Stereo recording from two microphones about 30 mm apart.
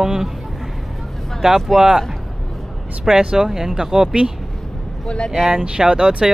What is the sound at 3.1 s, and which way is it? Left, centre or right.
Speech, right.